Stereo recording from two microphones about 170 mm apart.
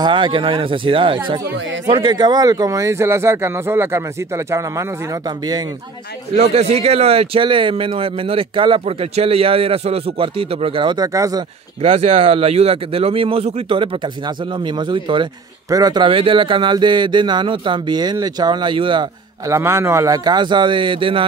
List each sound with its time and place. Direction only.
0.0 s a man's voice: 30° right (ahead or behind)
6.3 s a man's voice: 40° right (ahead or behind); by 11.4 s 20° right (ahead or behind)
11.8 s a man's voice: 35° right (ahead or behind)
19.4 s speech: 15° right (ahead or behind)